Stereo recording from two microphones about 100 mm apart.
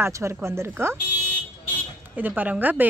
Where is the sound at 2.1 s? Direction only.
15° right (ahead or behind).